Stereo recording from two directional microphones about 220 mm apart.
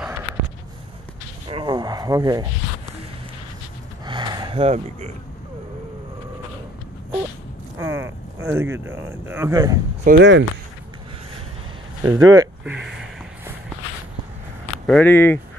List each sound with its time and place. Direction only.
1.5 s a sound: 20° right (ahead or behind)
4.0 s gasp: 20° right (ahead or behind)
7.8 s speech: 10° right (ahead or behind)
10.0 s speech: 50° right (ahead or behind)
12.0 s speech: 15° right (ahead or behind)
12.8 s a sound: centre (ahead or behind)
14.9 s speech: 10° left (ahead or behind)